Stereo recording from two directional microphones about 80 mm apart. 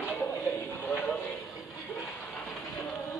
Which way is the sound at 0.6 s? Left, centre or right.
Left.